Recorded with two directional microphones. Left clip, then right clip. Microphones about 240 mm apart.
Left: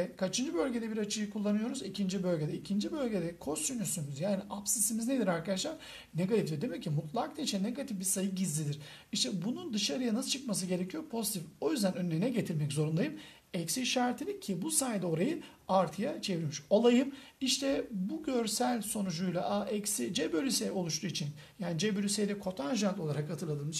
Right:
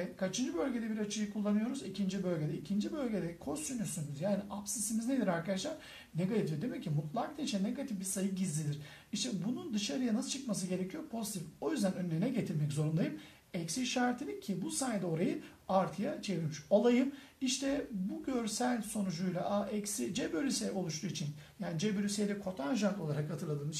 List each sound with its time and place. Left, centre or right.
0.2 s speech: left
5.0 s speech: left